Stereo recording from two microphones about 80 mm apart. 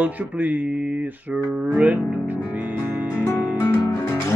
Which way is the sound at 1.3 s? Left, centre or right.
Centre.